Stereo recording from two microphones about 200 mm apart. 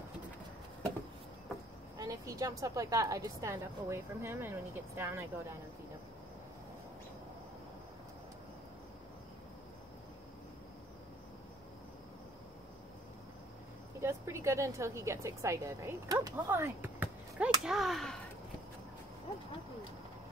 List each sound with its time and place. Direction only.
2.0 s a woman's voice: 15° right (ahead or behind)
13.9 s speech: 15° right (ahead or behind)